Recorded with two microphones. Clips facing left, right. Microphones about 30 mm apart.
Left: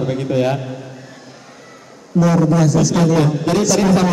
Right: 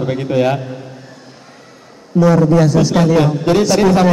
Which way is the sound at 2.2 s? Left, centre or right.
Right.